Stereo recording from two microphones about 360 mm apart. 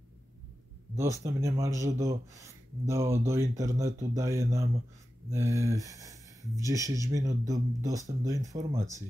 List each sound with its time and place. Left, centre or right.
0.9 s speech: centre